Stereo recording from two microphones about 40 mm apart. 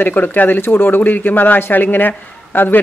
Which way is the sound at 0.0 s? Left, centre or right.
Left.